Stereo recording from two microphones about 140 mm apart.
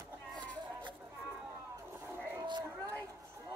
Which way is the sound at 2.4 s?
30° right (ahead or behind).